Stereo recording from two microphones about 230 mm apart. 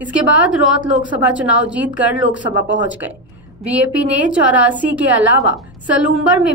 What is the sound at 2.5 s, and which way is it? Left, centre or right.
Speech, left.